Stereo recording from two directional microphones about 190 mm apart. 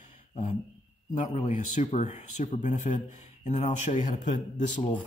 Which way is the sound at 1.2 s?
40° left (ahead or behind).